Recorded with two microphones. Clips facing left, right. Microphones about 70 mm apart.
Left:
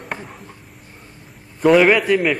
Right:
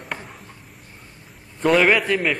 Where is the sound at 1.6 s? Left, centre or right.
Centre.